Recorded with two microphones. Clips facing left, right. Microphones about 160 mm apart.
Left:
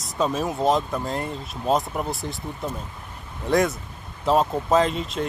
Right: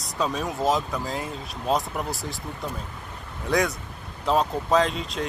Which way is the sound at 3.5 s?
Centre (ahead or behind).